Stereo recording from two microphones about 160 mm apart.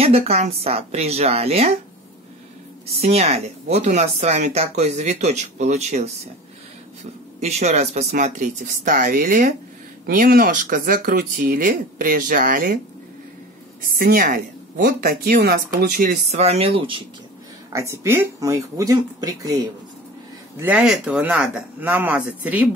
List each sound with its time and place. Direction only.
0.0 s a woman's voice: 40° right (ahead or behind)
2.9 s speech: 40° right (ahead or behind)
7.3 s speech: 45° right (ahead or behind)
8.2 s speech: 55° right (ahead or behind)
10.0 s speech: 65° right (ahead or behind)
13.9 s speech: 60° right (ahead or behind)
16.3 s a woman's voice: 40° right (ahead or behind)
17.7 s speech: 20° right (ahead or behind)
20.5 s speech: 10° right (ahead or behind)